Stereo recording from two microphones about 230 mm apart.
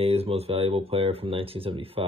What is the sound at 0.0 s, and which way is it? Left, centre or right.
Speech, right.